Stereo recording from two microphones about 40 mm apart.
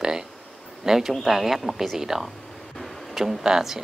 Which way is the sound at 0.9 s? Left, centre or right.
Centre.